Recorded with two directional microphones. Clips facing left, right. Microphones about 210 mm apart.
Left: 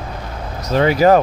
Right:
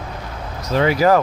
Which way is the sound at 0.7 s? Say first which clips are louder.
Left 3 dB; 30° left (ahead or behind).